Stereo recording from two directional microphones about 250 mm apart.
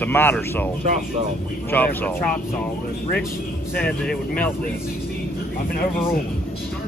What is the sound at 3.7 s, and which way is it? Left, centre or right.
Speech, centre.